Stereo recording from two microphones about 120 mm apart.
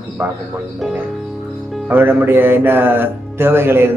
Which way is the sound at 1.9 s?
15° right (ahead or behind).